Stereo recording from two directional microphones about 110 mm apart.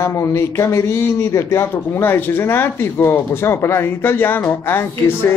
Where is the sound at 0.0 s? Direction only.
25° left (ahead or behind).